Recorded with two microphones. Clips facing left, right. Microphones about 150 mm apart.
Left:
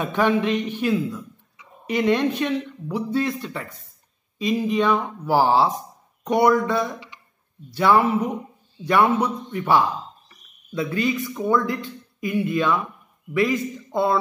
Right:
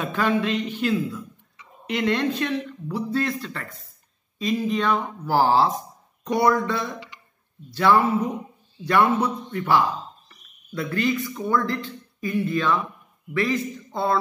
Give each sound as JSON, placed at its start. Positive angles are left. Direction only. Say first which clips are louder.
{"t": 0.0, "sound": "speech", "louder": "left 3 dB", "side_deg": 20}
{"t": 2.0, "sound": "speech", "louder": "left 3 dB", "side_deg": 15}
{"t": 6.2, "sound": "a man's voice", "louder": "left 3 dB", "side_deg": 20}